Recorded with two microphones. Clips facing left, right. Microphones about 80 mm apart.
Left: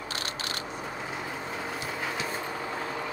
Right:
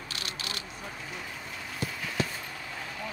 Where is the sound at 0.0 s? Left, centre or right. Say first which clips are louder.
Left 4 dB; left.